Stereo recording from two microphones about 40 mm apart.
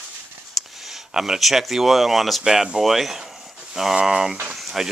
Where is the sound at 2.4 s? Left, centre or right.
Centre.